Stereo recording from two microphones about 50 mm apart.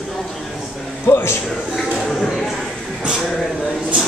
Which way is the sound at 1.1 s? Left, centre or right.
Left.